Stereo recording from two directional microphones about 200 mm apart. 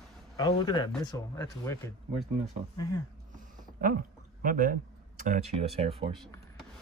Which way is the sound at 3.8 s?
45° right (ahead or behind).